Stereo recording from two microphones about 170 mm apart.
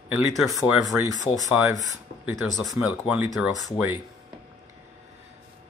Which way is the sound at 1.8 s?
20° right (ahead or behind).